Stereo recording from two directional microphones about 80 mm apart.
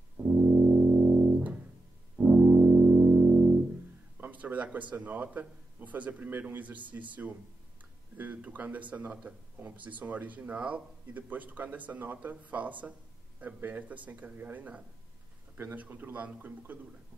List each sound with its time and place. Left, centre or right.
0.2 s music: centre
4.2 s a man's voice: right